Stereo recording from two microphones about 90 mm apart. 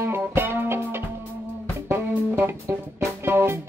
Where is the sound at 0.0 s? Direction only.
25° right (ahead or behind).